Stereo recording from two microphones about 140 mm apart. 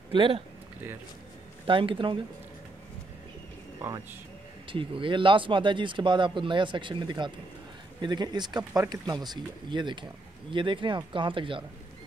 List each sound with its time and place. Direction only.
0.1 s speech: 35° right (ahead or behind)
1.7 s speech: 40° right (ahead or behind)
4.6 s speech: 40° right (ahead or behind)